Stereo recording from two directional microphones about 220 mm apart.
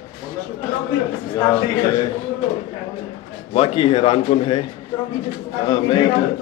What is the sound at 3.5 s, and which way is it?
A man's voice, 25° left (ahead or behind).